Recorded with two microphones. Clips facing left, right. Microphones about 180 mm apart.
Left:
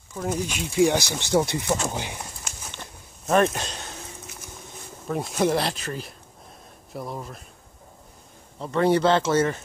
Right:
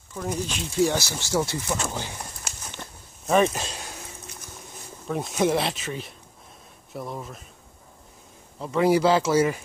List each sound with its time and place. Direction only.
0.1 s speech: 10° left (ahead or behind)
3.3 s speech: centre (ahead or behind)
5.0 s speech: centre (ahead or behind)
8.5 s speech: 5° right (ahead or behind)